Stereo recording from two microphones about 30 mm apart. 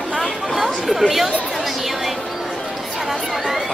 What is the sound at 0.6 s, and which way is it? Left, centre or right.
Chatter, centre.